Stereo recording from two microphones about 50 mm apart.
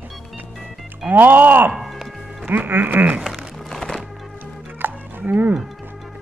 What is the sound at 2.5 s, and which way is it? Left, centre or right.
Speech, right.